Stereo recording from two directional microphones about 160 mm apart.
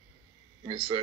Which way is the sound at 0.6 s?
35° right (ahead or behind).